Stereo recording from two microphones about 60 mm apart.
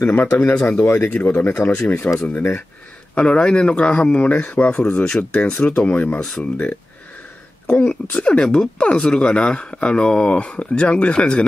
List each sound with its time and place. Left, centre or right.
0.1 s speech: left
0.8 s speech: left
1.1 s speech: left
6.2 s speech: centre
7.7 s speech: centre